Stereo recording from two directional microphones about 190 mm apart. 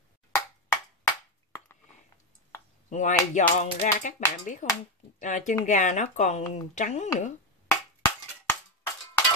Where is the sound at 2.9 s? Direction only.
40° left (ahead or behind).